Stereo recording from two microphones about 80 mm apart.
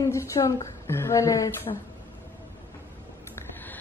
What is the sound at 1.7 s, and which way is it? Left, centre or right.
Speech, left.